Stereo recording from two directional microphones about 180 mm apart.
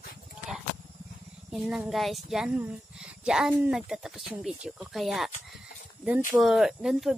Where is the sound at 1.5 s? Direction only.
5° right (ahead or behind).